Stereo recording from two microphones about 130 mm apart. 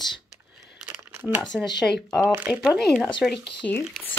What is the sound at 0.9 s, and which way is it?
Crumpling, 15° right (ahead or behind).